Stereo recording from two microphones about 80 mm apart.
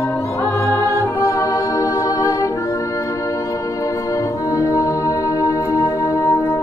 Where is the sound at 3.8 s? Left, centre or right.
Left.